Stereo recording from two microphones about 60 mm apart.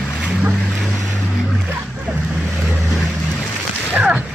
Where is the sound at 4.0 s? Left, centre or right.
Right.